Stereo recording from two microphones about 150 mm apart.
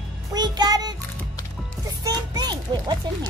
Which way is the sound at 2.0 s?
25° right (ahead or behind).